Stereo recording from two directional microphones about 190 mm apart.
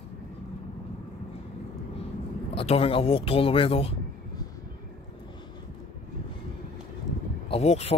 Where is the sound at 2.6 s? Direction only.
30° left (ahead or behind).